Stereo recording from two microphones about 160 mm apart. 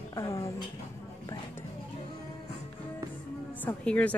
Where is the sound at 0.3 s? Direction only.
20° left (ahead or behind).